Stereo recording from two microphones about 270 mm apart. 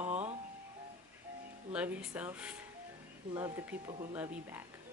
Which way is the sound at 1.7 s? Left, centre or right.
Centre.